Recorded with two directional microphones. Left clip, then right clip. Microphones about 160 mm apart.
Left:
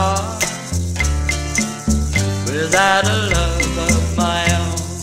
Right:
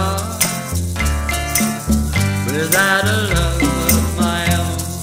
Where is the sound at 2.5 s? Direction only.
15° right (ahead or behind).